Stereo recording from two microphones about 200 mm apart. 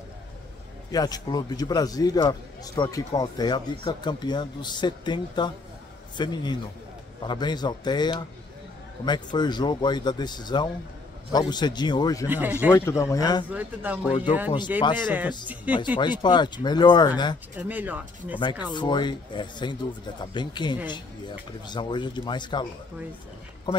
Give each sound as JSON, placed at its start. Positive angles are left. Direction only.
{"t": 0.9, "sound": "speech", "side_deg": 20}
{"t": 12.3, "sound": "speech", "side_deg": -10}
{"t": 12.7, "sound": "speech", "side_deg": 15}
{"t": 13.5, "sound": "speech", "side_deg": -10}
{"t": 16.0, "sound": "speech", "side_deg": 20}
{"t": 17.6, "sound": "speech", "side_deg": -10}
{"t": 18.4, "sound": "speech", "side_deg": 20}